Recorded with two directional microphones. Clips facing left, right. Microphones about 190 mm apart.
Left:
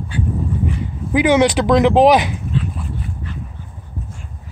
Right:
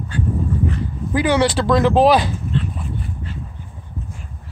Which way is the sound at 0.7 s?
20° left (ahead or behind).